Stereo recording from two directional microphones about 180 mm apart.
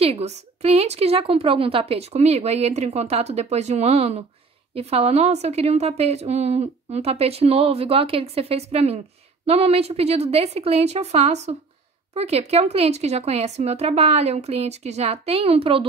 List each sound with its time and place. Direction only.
0.0 s a woman's voice: 35° right (ahead or behind)